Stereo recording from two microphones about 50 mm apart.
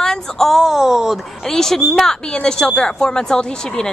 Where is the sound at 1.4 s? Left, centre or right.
Centre.